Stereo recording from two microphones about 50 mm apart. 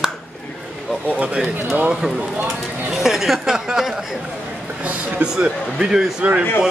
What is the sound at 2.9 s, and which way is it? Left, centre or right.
Speech, centre.